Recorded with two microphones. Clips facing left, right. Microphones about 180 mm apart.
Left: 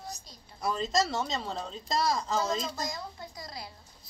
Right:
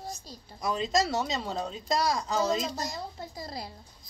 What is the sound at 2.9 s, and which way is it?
Speech, 30° right (ahead or behind).